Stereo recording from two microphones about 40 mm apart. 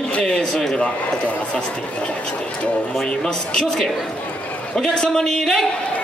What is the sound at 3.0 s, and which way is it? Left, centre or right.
A man's voice, centre.